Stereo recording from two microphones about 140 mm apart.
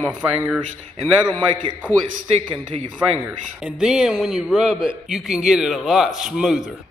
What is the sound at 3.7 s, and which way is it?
A man's voice, 5° right (ahead or behind).